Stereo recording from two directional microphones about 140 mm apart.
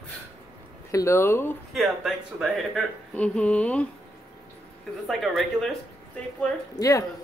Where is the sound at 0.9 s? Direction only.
20° left (ahead or behind).